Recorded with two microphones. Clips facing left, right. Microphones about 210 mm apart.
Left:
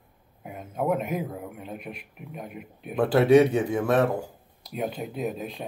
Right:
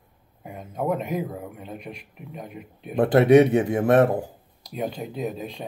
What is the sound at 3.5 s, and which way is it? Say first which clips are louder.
Speech: right 4 dB; 55° right (ahead or behind).